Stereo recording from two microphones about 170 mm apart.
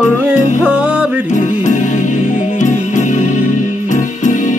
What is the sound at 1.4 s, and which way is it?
Music, 45° left (ahead or behind).